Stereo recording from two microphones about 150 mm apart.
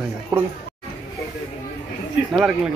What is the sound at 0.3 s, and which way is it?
Speech, 25° right (ahead or behind).